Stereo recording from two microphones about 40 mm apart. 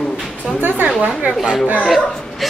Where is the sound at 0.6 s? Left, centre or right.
Right.